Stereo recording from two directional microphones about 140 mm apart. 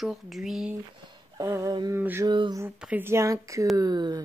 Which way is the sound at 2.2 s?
30° right (ahead or behind).